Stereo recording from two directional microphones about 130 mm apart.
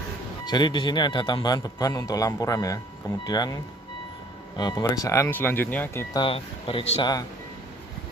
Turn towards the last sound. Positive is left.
turn(degrees=45)  # may be behind; listen again after turning